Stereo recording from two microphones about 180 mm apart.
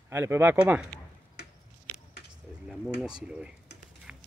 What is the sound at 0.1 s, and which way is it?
Speech, 15° right (ahead or behind).